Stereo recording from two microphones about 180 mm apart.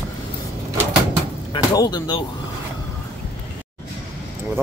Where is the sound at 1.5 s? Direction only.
20° left (ahead or behind).